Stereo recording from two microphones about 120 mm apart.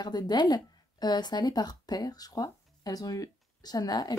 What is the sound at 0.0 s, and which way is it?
Speech, 35° left (ahead or behind).